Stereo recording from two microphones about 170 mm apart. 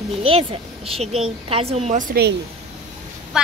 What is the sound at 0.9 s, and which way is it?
A woman's voice, 35° right (ahead or behind).